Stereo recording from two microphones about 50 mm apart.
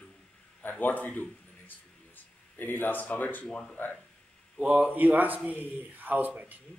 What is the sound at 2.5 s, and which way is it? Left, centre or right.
Speech, left.